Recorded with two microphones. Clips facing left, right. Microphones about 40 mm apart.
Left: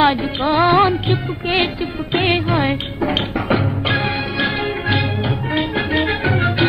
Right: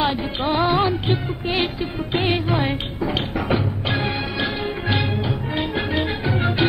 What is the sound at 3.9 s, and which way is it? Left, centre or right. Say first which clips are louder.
Music: left 3 dB; left.